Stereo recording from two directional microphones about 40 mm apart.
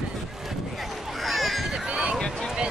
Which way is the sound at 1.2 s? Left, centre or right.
Centre.